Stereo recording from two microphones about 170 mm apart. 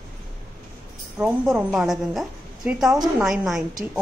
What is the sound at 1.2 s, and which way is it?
A woman's voice, 5° right (ahead or behind).